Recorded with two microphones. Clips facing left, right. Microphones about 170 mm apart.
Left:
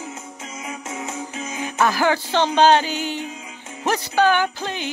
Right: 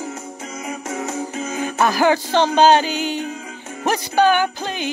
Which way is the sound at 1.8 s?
15° right (ahead or behind).